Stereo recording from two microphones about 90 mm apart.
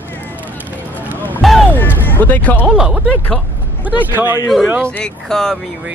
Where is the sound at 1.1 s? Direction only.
20° left (ahead or behind).